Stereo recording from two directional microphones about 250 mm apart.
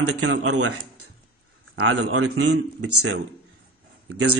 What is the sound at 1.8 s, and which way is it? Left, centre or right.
Speech, right.